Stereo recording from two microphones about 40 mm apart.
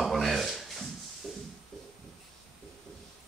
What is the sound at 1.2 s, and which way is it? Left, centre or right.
Music, centre.